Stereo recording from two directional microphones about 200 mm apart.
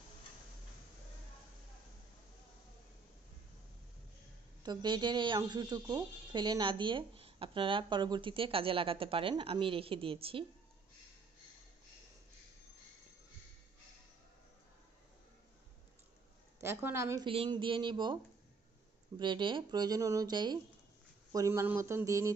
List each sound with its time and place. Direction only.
4.6 s speech: 20° right (ahead or behind)
16.6 s speech: 15° right (ahead or behind)
17.3 s speech: 25° right (ahead or behind)